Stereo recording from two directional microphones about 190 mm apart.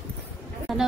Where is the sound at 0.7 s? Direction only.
Centre (ahead or behind).